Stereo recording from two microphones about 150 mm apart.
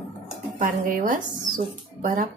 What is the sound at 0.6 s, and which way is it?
Speech, 60° right (ahead or behind).